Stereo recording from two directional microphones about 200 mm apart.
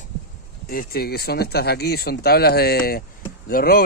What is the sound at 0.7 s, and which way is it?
A man's voice, 50° left (ahead or behind).